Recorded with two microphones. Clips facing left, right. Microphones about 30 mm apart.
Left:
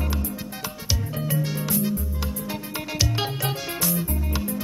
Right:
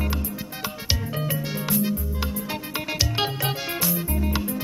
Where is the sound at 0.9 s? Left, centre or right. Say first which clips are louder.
Right 1 dB; right.